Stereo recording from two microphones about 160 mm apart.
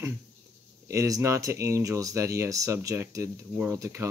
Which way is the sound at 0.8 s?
20° right (ahead or behind).